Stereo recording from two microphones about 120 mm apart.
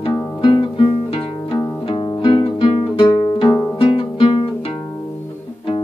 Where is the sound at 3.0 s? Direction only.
35° left (ahead or behind).